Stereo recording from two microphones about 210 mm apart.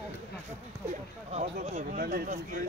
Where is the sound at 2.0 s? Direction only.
40° right (ahead or behind).